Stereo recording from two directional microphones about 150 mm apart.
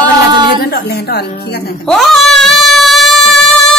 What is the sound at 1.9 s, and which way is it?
Music, centre (ahead or behind).